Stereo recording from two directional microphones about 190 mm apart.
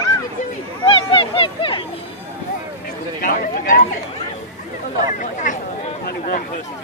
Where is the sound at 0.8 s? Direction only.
25° left (ahead or behind).